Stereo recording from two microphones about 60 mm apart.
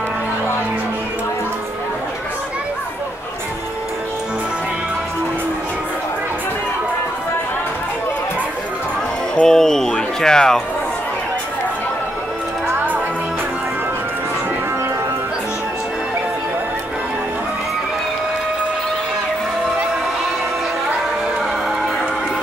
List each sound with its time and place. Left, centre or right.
9.3 s music: centre
12.6 s music: right